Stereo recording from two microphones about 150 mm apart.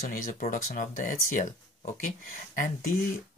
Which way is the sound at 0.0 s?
70° left (ahead or behind).